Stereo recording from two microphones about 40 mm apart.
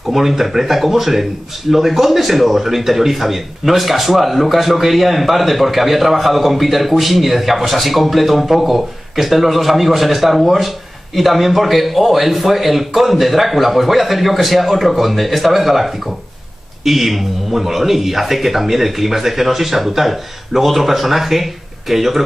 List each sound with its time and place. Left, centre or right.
0.1 s a man's voice: centre